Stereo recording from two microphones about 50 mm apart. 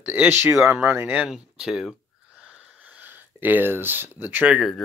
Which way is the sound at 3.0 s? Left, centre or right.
Right.